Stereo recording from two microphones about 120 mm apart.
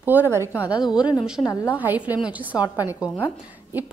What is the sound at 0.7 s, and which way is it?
Speech, 35° left (ahead or behind).